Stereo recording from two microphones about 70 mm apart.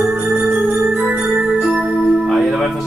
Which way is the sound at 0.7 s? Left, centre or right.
Centre.